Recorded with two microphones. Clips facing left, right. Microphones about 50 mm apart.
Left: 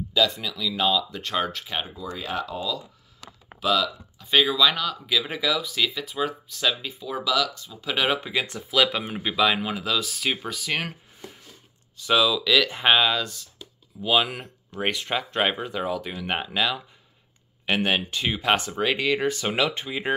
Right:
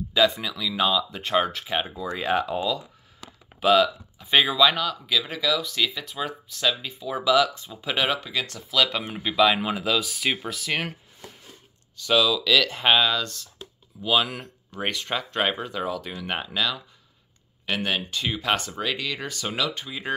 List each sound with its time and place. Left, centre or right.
0.1 s speech: centre
1.9 s speech: right
3.6 s speech: right
4.2 s speech: centre
5.2 s speech: centre
7.2 s speech: right
7.8 s speech: centre
8.2 s speech: centre